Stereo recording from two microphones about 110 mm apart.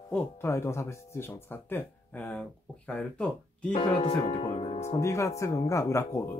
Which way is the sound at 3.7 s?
60° left (ahead or behind).